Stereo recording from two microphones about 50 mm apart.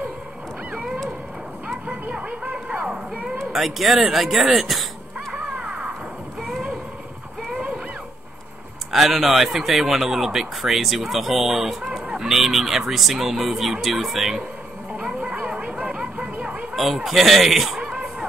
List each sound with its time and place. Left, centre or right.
1.9 s music: right
2.8 s a sound: centre
3.5 s speech: centre
5.3 s crow: centre
6.4 s a sound: centre
7.4 s music: centre
8.9 s speech: centre
15.1 s music: right
16.7 s speech: centre